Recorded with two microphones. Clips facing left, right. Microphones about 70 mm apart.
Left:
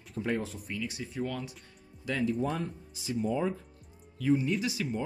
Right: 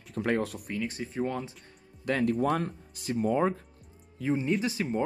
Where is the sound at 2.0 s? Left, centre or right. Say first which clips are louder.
Right 4 dB; right.